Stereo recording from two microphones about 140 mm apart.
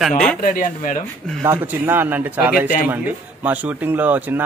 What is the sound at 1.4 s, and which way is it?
A man's voice, 15° right (ahead or behind).